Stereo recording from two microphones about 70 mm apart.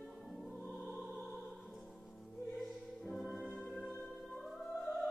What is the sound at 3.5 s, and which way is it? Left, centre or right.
Music, left.